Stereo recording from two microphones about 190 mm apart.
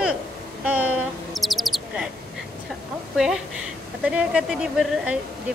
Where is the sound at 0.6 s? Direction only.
5° right (ahead or behind).